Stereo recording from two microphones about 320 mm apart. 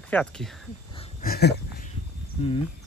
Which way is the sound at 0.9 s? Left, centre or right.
Left.